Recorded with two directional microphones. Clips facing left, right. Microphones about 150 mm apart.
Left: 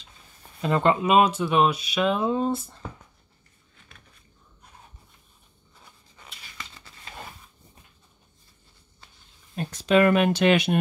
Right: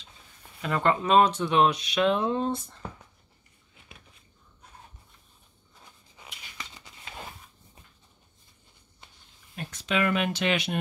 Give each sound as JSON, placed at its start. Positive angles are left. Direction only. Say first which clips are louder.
{"t": 0.6, "sound": "speech", "louder": "left 4 dB", "side_deg": 25}
{"t": 1.0, "sound": "speech", "louder": "left 1 dB", "side_deg": 10}
{"t": 6.7, "sound": "a sound", "louder": "even", "side_deg": -15}
{"t": 9.6, "sound": "speech", "louder": "left 8 dB", "side_deg": 40}